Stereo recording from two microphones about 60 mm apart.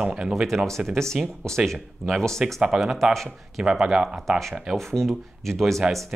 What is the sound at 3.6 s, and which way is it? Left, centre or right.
Speech, centre.